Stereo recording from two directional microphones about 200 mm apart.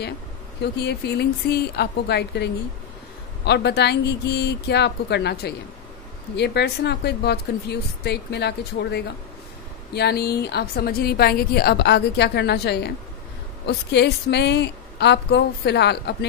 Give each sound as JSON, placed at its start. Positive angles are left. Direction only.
{"t": 0.6, "sound": "a woman's voice", "side_deg": 55}